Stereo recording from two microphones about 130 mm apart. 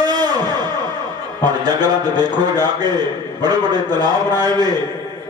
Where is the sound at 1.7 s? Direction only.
30° right (ahead or behind).